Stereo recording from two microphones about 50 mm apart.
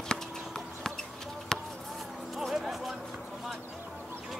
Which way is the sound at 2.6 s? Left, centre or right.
Centre.